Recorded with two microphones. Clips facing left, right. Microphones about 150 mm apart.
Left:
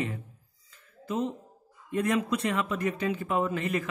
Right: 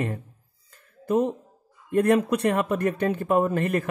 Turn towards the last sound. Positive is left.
turn(degrees=-55)  # may be behind; listen again after turning